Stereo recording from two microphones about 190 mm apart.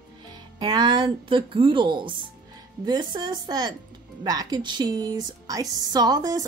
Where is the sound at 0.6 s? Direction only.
25° right (ahead or behind).